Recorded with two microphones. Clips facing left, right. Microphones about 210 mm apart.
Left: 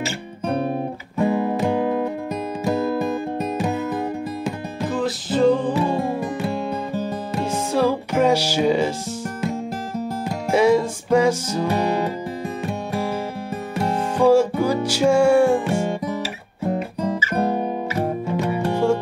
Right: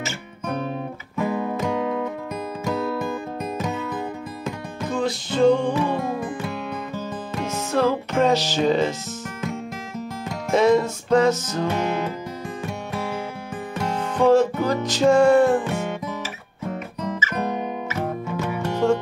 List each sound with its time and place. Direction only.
0.0 s guitar: 35° left (ahead or behind)
2.6 s music: 35° left (ahead or behind)
4.9 s music: 5° left (ahead or behind)
6.9 s music: 15° left (ahead or behind)
10.5 s music: 10° left (ahead or behind)
13.9 s music: 10° left (ahead or behind)
16.2 s guitar: 35° left (ahead or behind)
18.4 s music: 35° left (ahead or behind)
18.7 s music: 10° left (ahead or behind)